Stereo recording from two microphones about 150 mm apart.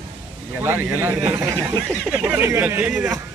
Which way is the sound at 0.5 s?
15° right (ahead or behind).